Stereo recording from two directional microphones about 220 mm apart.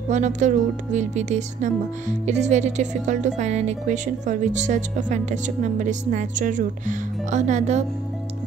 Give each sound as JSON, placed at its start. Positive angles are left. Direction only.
{"t": 0.1, "sound": "a woman's voice", "side_deg": -35}